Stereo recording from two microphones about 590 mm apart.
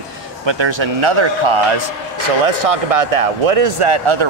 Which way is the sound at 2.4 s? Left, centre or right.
Right.